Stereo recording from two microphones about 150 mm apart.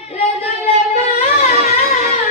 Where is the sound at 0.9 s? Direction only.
45° left (ahead or behind).